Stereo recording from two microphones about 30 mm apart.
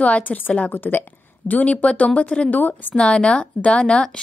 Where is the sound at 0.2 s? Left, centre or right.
Left.